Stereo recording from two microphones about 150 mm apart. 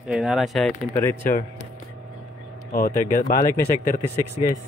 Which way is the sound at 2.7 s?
65° left (ahead or behind).